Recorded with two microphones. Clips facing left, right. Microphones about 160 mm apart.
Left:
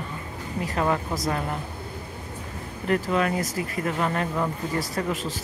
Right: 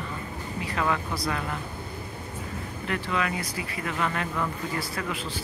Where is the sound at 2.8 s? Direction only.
40° left (ahead or behind).